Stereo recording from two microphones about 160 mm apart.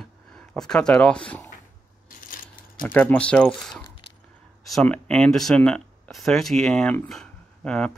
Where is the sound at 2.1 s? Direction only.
60° left (ahead or behind).